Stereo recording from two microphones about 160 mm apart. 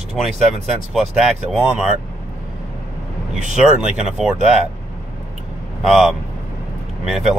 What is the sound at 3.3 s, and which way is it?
Speech, 50° right (ahead or behind).